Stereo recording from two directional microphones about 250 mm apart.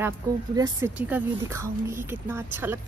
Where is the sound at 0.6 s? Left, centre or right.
Centre.